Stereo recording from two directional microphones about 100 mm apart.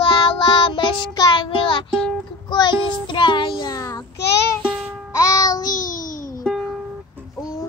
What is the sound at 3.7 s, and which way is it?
Child singing, 35° left (ahead or behind).